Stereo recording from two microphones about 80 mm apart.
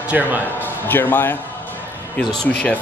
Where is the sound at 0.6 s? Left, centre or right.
Left.